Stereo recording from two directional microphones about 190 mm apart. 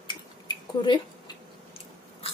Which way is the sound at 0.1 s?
25° left (ahead or behind).